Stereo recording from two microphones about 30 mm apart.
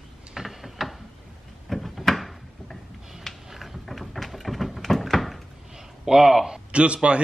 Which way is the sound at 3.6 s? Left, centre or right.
Centre.